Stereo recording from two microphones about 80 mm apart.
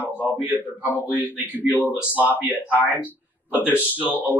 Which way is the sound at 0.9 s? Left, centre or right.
Right.